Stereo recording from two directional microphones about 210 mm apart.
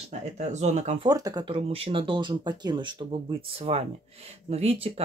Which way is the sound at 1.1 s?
20° right (ahead or behind).